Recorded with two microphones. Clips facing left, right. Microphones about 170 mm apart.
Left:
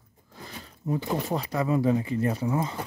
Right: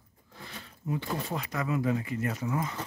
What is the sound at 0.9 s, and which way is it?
Speech, 35° left (ahead or behind).